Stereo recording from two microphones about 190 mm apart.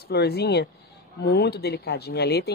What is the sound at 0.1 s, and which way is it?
Speech, 55° left (ahead or behind).